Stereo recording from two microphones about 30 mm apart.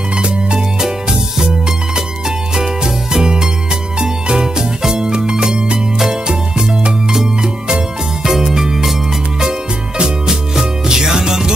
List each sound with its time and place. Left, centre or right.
2.5 s music: right
4.9 s music: right
7.6 s music: right
8.3 s music: centre
9.4 s music: right